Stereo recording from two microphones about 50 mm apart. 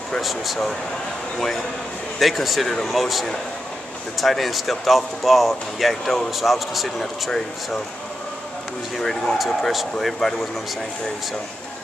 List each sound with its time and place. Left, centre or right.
0.2 s speech: centre
2.1 s speech: centre
8.9 s speech: centre